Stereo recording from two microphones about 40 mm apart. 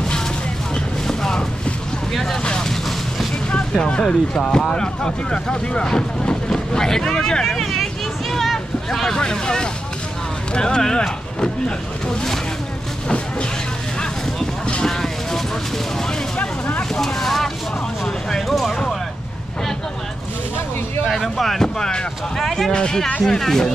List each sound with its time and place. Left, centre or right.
1.0 s a sound: centre
3.7 s speech: left
7.4 s vehicle: centre
9.1 s speech: centre
14.9 s vehicle: centre
17.0 s speech: centre
18.0 s a sound: centre
21.0 s speech: centre